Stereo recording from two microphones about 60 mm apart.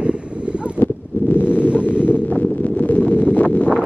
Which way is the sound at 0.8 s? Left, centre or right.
Left.